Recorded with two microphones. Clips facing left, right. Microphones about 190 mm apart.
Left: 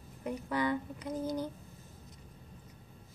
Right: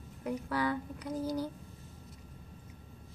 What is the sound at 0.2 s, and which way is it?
Speech, centre (ahead or behind).